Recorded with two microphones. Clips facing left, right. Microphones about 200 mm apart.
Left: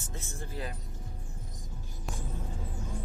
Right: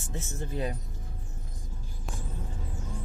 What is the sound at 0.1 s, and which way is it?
Speech, 20° right (ahead or behind).